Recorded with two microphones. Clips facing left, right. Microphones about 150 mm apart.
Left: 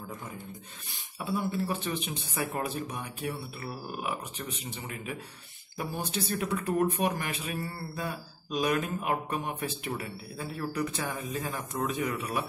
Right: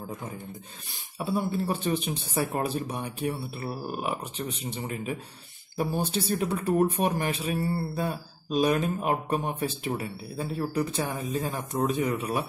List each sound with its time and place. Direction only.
1.2 s speech: 35° right (ahead or behind)